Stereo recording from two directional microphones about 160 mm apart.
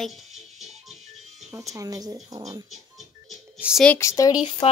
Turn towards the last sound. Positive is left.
turn(degrees=25)  # may be behind; listen again after turning